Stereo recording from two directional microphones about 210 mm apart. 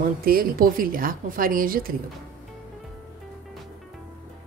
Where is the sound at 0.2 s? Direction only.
45° right (ahead or behind).